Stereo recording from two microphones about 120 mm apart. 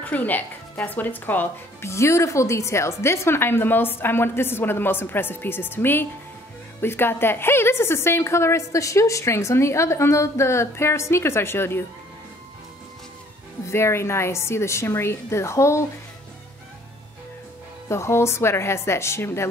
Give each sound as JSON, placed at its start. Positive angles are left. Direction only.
{"t": 0.0, "sound": "a woman's voice", "side_deg": 15}
{"t": 13.7, "sound": "a woman's voice", "side_deg": 20}
{"t": 17.8, "sound": "a woman's voice", "side_deg": 20}